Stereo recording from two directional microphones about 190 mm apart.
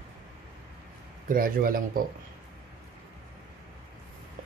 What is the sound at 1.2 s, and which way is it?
Speech, 50° right (ahead or behind).